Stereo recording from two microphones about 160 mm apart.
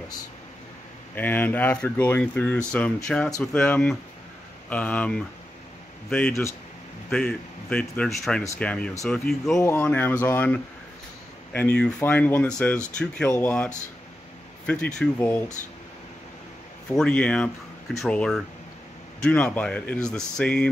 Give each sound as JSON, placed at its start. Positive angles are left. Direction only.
{"t": 1.1, "sound": "speech", "side_deg": 10}
{"t": 9.6, "sound": "speech", "side_deg": 15}
{"t": 14.7, "sound": "speech", "side_deg": 5}
{"t": 16.9, "sound": "speech", "side_deg": 5}